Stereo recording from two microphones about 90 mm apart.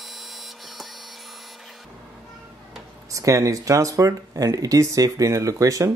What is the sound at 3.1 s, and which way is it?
Speech, 40° right (ahead or behind).